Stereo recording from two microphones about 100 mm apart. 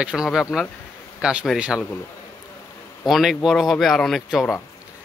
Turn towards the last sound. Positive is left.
turn(degrees=0)  # may be behind; listen again after turning